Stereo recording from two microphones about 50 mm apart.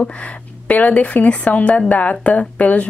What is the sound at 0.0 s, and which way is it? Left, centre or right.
A woman's voice, left.